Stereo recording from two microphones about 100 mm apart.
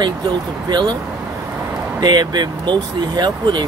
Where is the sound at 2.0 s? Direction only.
45° right (ahead or behind).